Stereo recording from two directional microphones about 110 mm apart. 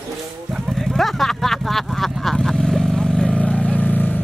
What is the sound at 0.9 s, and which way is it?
Vehicle, centre (ahead or behind).